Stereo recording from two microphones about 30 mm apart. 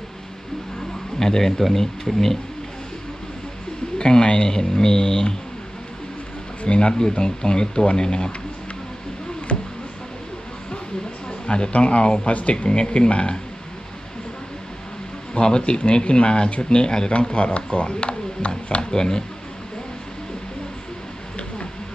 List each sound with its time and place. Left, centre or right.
1.2 s speech: centre
1.6 s speech: centre
4.0 s speech: left
6.6 s speech: left
7.0 s speech: left
9.5 s a sound: left
11.4 s speech: left
12.3 s speech: left
12.6 s speech: left
15.4 s speech: left
17.1 s speech: left
18.8 s speech: left